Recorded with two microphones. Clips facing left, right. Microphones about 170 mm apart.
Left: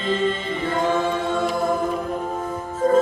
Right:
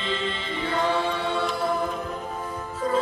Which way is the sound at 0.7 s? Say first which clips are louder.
Left 3 dB; 45° left (ahead or behind).